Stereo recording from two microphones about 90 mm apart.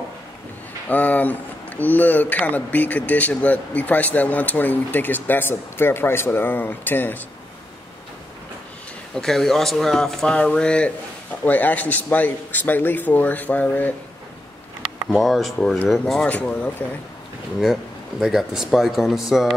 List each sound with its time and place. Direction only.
0.8 s speech: 20° left (ahead or behind)
9.1 s speech: 5° left (ahead or behind)
15.0 s speech: centre (ahead or behind)
16.3 s speech: 15° left (ahead or behind)
18.2 s speech: 5° right (ahead or behind)